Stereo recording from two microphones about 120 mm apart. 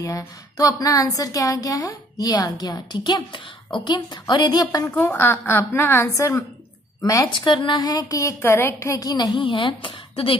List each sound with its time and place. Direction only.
0.6 s a woman's voice: 30° left (ahead or behind)
4.9 s a woman's voice: 20° left (ahead or behind)
7.3 s a woman's voice: 40° left (ahead or behind)